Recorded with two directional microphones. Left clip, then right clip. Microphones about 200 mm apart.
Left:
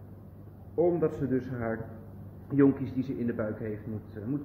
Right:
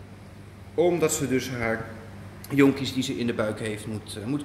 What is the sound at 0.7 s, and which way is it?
A man's voice, 15° right (ahead or behind).